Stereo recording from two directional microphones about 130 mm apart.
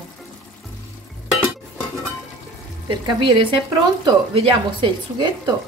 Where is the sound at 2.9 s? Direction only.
40° right (ahead or behind).